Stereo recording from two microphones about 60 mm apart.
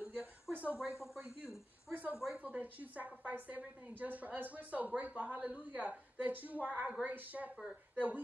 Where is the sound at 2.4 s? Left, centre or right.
Right.